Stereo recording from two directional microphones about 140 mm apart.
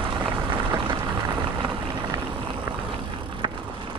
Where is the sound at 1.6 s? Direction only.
35° right (ahead or behind).